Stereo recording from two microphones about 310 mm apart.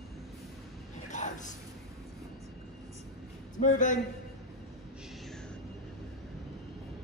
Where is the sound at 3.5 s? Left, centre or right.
Left.